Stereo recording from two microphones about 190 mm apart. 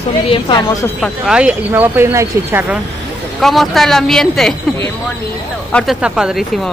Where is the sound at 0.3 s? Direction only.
25° left (ahead or behind).